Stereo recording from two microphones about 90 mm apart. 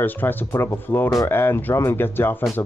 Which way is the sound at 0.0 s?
20° left (ahead or behind).